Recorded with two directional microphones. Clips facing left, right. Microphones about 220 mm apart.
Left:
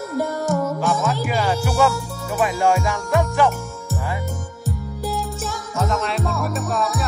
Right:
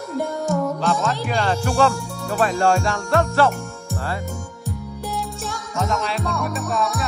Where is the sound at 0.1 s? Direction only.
Centre (ahead or behind).